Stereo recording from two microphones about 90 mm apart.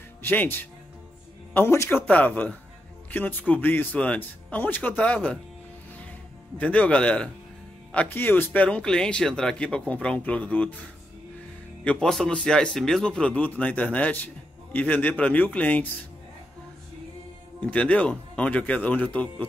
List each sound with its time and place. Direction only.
0.2 s speech: 25° left (ahead or behind)
2.0 s speech: 15° left (ahead or behind)
6.6 s speech: 15° left (ahead or behind)
8.6 s speech: 10° left (ahead or behind)
11.8 s speech: 15° left (ahead or behind)
17.6 s speech: 15° left (ahead or behind)